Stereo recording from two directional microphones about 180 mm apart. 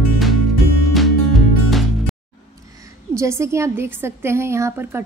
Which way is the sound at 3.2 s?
15° right (ahead or behind).